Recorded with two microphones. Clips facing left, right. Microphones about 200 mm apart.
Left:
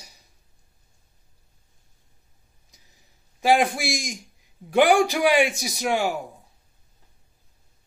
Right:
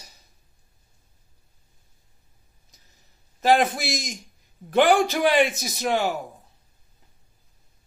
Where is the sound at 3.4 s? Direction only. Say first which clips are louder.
Even; 10° left (ahead or behind).